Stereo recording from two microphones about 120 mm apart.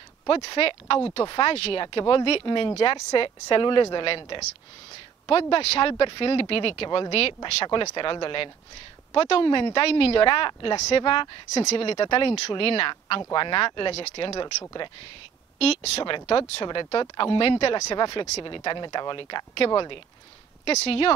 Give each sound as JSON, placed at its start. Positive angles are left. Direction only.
{"t": 0.3, "sound": "speech", "side_deg": 50}
{"t": 1.2, "sound": "speech", "side_deg": 40}
{"t": 1.5, "sound": "speech", "side_deg": 50}
{"t": 7.9, "sound": "speech", "side_deg": 40}
{"t": 11.5, "sound": "speech", "side_deg": 60}
{"t": 14.4, "sound": "speech", "side_deg": 35}
{"t": 15.6, "sound": "speech", "side_deg": 60}
{"t": 16.6, "sound": "speech", "side_deg": 40}
{"t": 17.7, "sound": "speech", "side_deg": 30}
{"t": 18.4, "sound": "speech", "side_deg": 40}
{"t": 20.6, "sound": "speech", "side_deg": 60}